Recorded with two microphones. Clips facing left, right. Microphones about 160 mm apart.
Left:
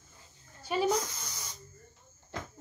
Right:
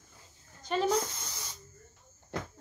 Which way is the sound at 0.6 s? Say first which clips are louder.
Even; 10° left (ahead or behind).